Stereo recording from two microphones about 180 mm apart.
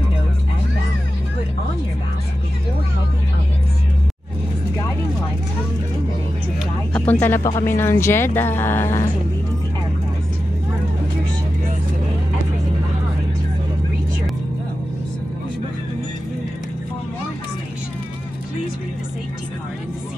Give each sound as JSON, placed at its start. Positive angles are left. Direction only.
{"t": 6.9, "sound": "speech", "side_deg": 10}